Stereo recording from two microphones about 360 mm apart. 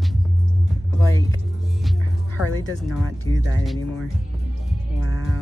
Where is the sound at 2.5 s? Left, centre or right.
Centre.